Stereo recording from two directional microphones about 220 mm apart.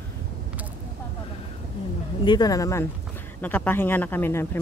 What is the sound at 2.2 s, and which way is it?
Speech, 20° left (ahead or behind).